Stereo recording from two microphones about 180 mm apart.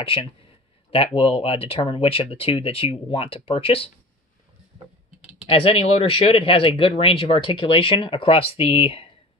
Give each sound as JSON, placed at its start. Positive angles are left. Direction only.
{"t": 0.0, "sound": "speech", "side_deg": 30}
{"t": 5.5, "sound": "speech", "side_deg": 30}